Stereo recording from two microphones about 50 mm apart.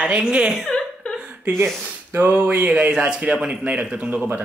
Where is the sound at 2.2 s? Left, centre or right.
Right.